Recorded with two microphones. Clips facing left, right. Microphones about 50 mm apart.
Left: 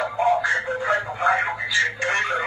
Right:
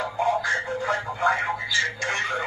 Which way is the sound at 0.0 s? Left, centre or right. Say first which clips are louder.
Left 3 dB; left.